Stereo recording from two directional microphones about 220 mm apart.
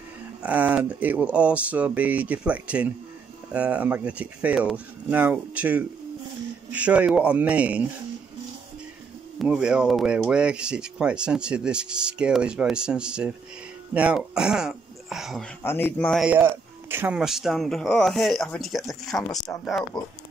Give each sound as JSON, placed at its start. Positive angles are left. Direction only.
{"t": 0.4, "sound": "speech", "side_deg": -5}
{"t": 9.4, "sound": "speech", "side_deg": -5}
{"t": 15.6, "sound": "speech", "side_deg": 10}